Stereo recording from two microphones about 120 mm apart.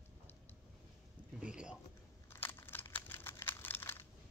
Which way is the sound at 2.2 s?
20° left (ahead or behind).